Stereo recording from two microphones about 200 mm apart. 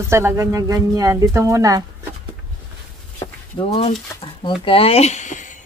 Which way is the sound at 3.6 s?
30° left (ahead or behind).